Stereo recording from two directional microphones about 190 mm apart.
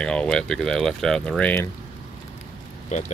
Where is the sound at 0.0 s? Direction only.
5° left (ahead or behind).